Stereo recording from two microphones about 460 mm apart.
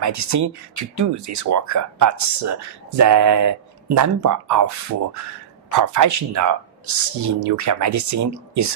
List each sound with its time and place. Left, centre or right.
0.0 s speech: right